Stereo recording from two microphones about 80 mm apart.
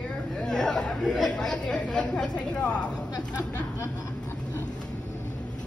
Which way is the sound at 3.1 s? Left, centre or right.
Left.